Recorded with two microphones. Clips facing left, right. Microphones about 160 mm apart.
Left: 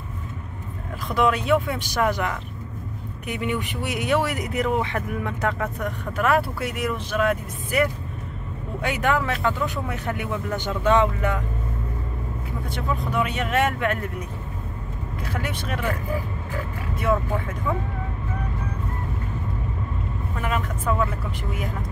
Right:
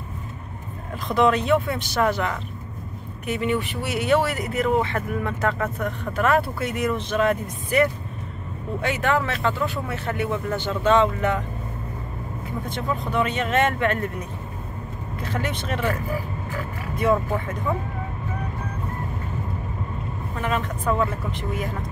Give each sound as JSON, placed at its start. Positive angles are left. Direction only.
{"t": 1.0, "sound": "speech", "side_deg": 10}
{"t": 12.6, "sound": "speech", "side_deg": 10}
{"t": 15.2, "sound": "speech", "side_deg": 10}
{"t": 20.4, "sound": "speech", "side_deg": 10}